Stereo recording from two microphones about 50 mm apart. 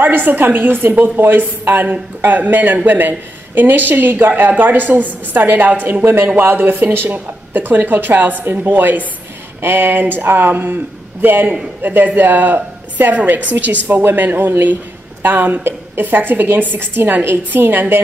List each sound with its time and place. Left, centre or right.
0.0 s a woman's voice: right
6.0 s a woman's voice: right